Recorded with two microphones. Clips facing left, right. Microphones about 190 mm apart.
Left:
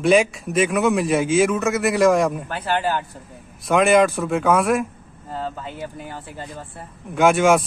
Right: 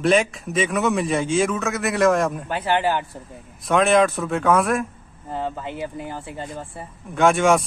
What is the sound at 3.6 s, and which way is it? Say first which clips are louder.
A man's voice: left 1 dB; centre (ahead or behind).